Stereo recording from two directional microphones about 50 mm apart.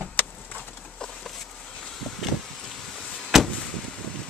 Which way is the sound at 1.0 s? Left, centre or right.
Centre.